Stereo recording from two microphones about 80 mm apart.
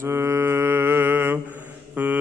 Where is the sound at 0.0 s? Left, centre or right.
Right.